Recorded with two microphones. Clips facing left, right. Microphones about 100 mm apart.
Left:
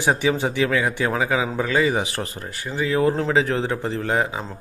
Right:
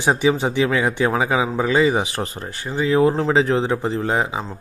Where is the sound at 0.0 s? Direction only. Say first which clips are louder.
Right 2 dB; 20° right (ahead or behind).